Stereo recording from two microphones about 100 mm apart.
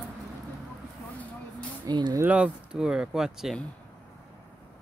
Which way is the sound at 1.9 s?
45° right (ahead or behind).